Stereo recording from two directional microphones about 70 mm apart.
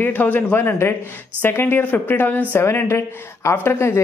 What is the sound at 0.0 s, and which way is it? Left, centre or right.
Speech, left.